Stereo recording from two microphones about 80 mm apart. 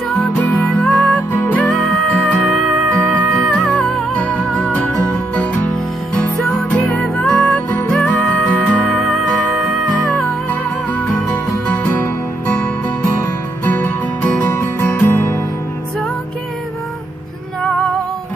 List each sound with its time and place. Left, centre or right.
0.6 s music: centre
1.9 s music: centre
10.1 s music: left